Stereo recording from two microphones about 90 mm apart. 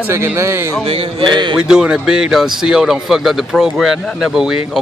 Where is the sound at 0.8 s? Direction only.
90° right; by 1.6 s 60° right (ahead or behind).